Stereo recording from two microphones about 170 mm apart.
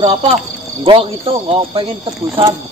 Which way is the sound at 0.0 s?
35° right (ahead or behind).